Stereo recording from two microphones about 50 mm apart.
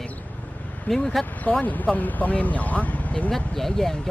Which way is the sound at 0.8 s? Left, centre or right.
Centre.